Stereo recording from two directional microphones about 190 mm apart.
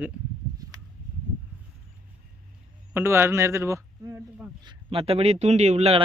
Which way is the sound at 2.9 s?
10° right (ahead or behind).